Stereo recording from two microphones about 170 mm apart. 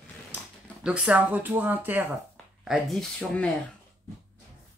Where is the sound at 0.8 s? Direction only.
5° right (ahead or behind).